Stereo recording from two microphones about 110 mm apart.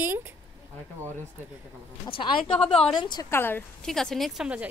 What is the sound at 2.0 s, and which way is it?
Speech, 50° left (ahead or behind).